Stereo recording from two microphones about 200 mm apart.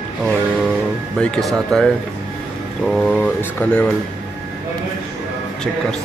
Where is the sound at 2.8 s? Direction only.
Centre (ahead or behind).